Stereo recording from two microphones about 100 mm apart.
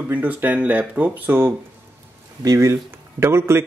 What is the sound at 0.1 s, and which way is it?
Speech, 15° right (ahead or behind).